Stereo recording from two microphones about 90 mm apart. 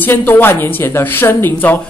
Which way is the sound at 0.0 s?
20° left (ahead or behind).